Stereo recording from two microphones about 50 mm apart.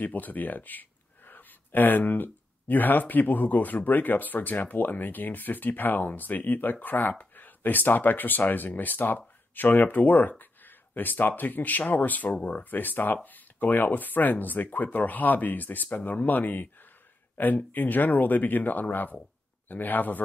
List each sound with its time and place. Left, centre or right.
0.0 s speech: left